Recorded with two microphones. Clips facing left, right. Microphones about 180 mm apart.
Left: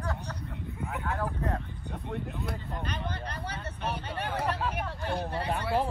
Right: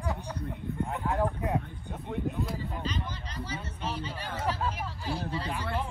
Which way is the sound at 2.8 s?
60° left (ahead or behind).